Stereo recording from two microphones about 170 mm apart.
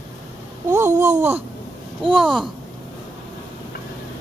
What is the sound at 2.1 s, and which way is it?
Speech, centre (ahead or behind).